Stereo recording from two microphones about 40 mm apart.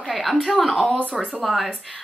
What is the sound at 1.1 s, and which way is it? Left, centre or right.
Speech, right.